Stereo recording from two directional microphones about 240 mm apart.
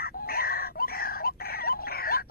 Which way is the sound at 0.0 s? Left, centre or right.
Left.